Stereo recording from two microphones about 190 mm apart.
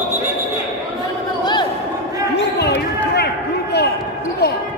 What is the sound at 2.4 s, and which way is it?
Basketball bounce, 60° left (ahead or behind).